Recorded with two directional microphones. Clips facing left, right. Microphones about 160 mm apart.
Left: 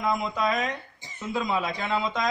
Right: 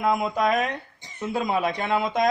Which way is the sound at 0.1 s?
55° right (ahead or behind).